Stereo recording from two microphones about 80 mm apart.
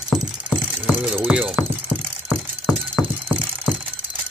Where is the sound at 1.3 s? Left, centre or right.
Centre.